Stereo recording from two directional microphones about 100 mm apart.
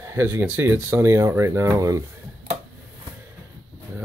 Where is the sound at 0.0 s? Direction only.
25° right (ahead or behind).